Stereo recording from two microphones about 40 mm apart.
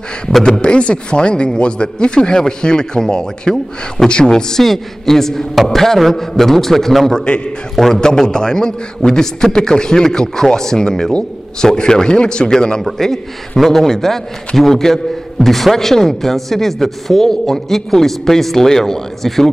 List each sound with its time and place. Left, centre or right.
0.4 s a man's voice: left
7.2 s a man's voice: left
7.7 s a man's voice: centre
12.8 s speech: centre